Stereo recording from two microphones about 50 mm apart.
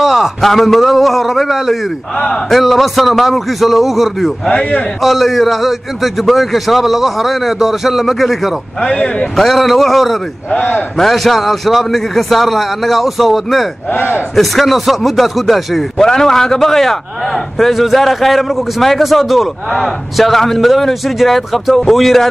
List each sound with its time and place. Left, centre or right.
0.0 s a man's voice: centre
4.5 s a man's voice: centre
5.0 s a man's voice: centre
8.8 s a man's voice: centre
9.5 s a man's voice: centre
13.9 s a man's voice: left
14.3 s a man's voice: centre
16.0 s a man's voice: centre